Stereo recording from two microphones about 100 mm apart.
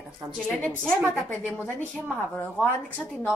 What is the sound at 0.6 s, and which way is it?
Speech, 15° left (ahead or behind).